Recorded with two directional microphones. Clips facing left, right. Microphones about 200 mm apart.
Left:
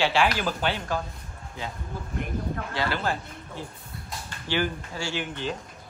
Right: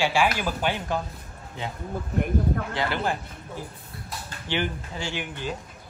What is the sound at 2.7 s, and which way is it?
Speech, 20° right (ahead or behind).